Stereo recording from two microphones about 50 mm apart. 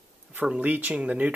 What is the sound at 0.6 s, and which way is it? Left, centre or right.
Speech, right.